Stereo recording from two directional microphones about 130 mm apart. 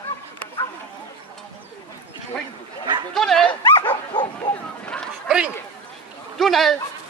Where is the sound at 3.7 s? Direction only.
40° left (ahead or behind).